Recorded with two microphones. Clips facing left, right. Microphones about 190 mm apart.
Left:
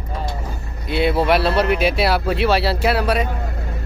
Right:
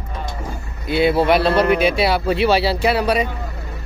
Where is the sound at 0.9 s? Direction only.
Centre (ahead or behind).